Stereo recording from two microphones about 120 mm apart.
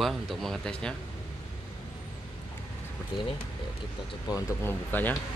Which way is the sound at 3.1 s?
40° left (ahead or behind).